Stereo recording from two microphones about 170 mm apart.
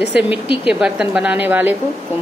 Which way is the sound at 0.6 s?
5° right (ahead or behind).